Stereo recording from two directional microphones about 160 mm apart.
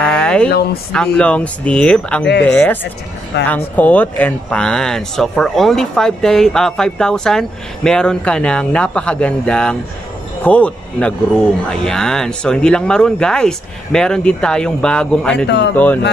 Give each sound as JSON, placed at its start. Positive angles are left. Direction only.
{"t": 0.0, "sound": "a sound", "side_deg": 5}
{"t": 0.9, "sound": "speech", "side_deg": 5}
{"t": 15.4, "sound": "speech", "side_deg": 90}
{"t": 15.7, "sound": "speech", "side_deg": 10}